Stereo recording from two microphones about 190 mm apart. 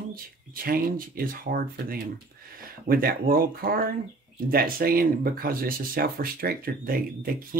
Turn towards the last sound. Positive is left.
turn(degrees=-50)  # may be behind; listen again after turning